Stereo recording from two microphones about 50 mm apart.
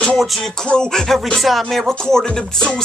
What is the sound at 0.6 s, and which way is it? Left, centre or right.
Music, centre.